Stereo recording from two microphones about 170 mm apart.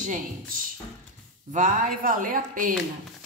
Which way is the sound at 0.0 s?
50° right (ahead or behind).